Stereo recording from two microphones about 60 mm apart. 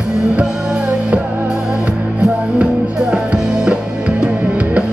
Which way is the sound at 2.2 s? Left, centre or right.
Centre.